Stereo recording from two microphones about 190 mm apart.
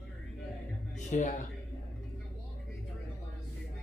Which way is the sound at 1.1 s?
40° left (ahead or behind).